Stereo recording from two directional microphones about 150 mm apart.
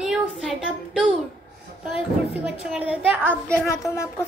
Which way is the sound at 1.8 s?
Centre (ahead or behind).